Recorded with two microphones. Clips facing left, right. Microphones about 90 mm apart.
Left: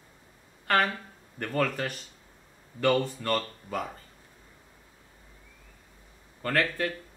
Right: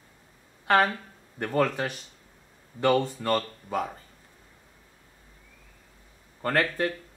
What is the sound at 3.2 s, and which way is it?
Speech, 15° right (ahead or behind).